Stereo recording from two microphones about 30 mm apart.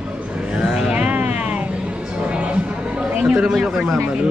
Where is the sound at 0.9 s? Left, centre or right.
Right.